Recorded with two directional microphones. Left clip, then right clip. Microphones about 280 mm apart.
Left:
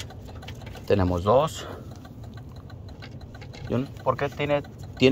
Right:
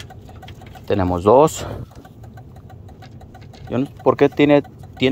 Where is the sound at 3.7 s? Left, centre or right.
Centre.